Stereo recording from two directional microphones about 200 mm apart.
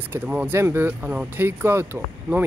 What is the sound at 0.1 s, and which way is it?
Speech, 10° right (ahead or behind).